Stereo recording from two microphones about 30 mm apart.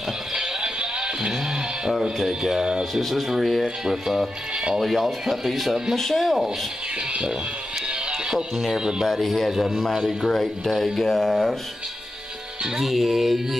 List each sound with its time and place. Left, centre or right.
0.4 s music: right
1.9 s speech: centre
2.8 s music: centre
3.6 s speech: centre
4.7 s music: centre
8.7 s speech: centre
9.0 s music: centre
10.2 s speech: centre
12.8 s music: centre